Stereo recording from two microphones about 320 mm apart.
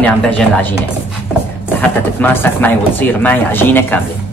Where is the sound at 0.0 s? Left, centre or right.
Centre.